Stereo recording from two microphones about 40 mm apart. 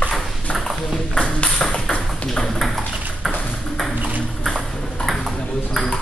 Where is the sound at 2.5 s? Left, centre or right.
Centre.